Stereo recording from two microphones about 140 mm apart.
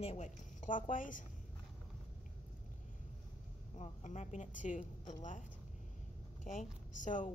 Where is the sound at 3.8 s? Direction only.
55° left (ahead or behind).